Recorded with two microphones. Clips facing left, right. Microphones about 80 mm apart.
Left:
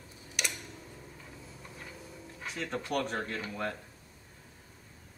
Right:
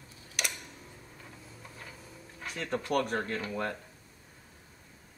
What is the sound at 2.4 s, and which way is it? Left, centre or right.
Speech, centre.